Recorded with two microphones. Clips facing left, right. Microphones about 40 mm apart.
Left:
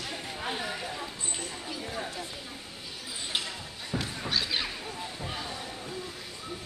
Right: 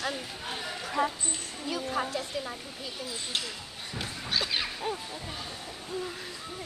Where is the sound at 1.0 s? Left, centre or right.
Right.